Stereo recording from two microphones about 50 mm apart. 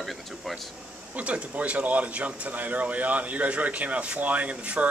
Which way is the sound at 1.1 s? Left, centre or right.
Right.